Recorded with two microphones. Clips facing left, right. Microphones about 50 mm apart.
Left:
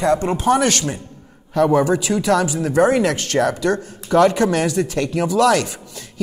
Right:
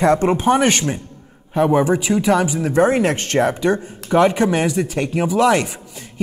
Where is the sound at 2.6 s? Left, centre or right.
Right.